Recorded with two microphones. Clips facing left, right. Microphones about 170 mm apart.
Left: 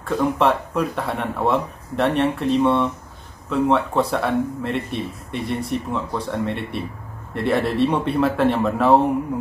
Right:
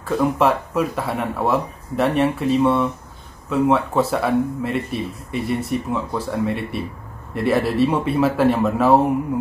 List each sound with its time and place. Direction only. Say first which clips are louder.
0.0 s speech: right 1 dB; 5° right (ahead or behind)